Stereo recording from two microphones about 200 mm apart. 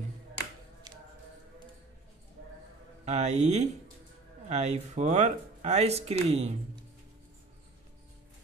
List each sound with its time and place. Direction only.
3.1 s speech: 35° right (ahead or behind)